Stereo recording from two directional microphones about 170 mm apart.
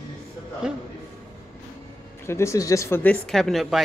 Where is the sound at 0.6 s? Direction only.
5° right (ahead or behind).